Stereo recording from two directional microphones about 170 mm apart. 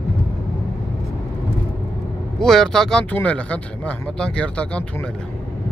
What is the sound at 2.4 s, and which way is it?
Speech, 5° left (ahead or behind).